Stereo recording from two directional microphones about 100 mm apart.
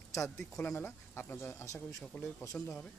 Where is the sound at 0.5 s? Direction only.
10° left (ahead or behind).